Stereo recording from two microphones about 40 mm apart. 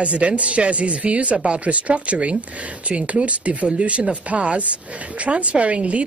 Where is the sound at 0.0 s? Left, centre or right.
Right.